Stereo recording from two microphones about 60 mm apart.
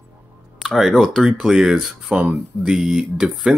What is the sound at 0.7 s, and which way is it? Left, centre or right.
Speech, centre.